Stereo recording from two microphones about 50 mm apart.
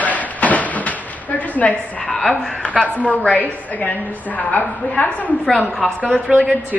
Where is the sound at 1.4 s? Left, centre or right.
Left.